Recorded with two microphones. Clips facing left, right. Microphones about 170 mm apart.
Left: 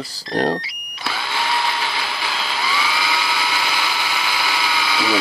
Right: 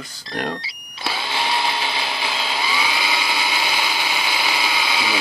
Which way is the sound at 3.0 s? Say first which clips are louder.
Left 1 dB; 25° right (ahead or behind).